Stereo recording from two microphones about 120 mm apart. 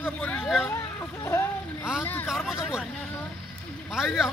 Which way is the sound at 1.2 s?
25° left (ahead or behind).